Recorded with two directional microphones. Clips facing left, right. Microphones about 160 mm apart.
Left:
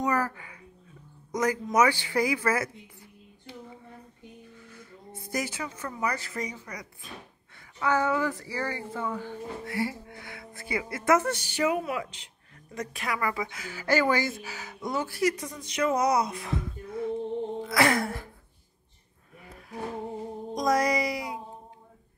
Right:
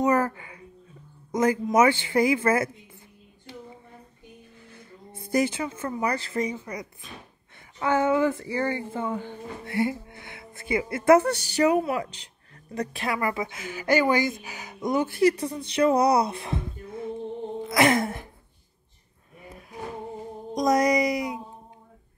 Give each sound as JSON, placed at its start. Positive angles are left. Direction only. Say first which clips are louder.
{"t": 0.0, "sound": "speech", "louder": "right 5 dB", "side_deg": -25}
{"t": 5.3, "sound": "speech", "louder": "right 8 dB", "side_deg": -25}
{"t": 20.5, "sound": "speech", "louder": "right 4 dB", "side_deg": -20}